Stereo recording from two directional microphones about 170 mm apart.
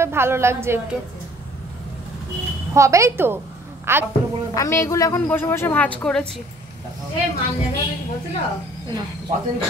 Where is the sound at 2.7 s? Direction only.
20° right (ahead or behind).